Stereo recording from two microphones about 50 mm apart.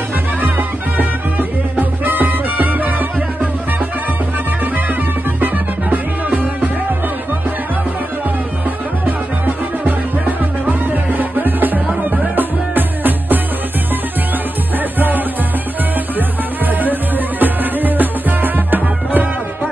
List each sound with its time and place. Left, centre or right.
0.4 s music: right
5.4 s music: right
10.7 s music: right
15.0 s music: right
17.4 s music: right